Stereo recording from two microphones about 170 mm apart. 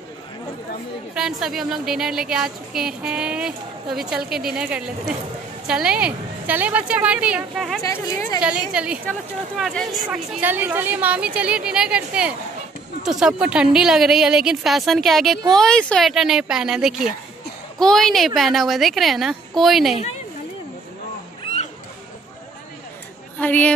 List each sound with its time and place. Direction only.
1.1 s a woman's voice: 5° right (ahead or behind)
7.8 s speech: 15° left (ahead or behind)
8.4 s a woman's voice: 5° right (ahead or behind)
10.4 s a woman's voice: 10° right (ahead or behind)
23.4 s speech: 10° left (ahead or behind)